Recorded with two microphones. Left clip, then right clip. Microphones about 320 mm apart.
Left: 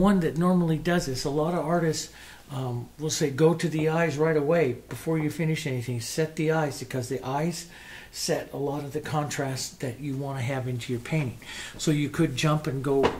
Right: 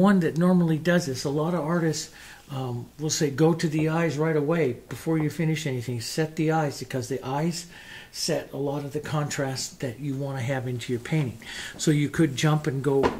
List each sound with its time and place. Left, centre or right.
0.0 s speech: right